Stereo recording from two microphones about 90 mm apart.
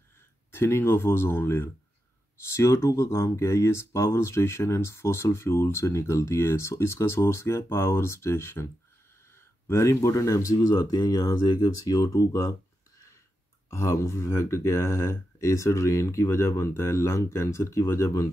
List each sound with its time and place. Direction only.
0.5 s speech: 25° left (ahead or behind)
2.5 s speech: 35° left (ahead or behind)
13.7 s speech: 30° left (ahead or behind)